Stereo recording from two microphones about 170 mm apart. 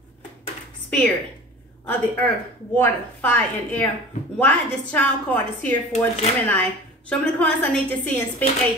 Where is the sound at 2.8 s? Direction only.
10° left (ahead or behind).